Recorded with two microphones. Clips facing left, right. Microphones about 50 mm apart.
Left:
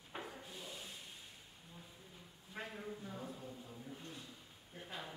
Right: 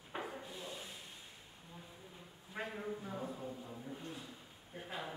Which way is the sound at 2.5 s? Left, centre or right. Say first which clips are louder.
Right 4 dB; centre.